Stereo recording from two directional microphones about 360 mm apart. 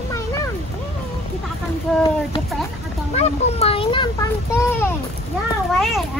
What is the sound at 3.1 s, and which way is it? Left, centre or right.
A child's voice, centre.